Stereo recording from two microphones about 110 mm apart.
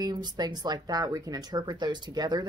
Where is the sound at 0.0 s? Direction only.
35° right (ahead or behind).